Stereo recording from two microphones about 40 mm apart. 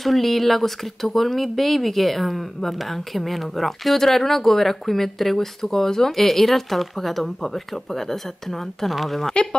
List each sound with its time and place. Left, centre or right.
0.0 s speech: centre
9.3 s speech: left